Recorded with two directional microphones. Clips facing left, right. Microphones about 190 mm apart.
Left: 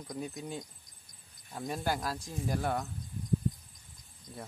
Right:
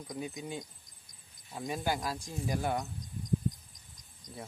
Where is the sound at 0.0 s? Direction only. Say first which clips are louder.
Even; centre (ahead or behind).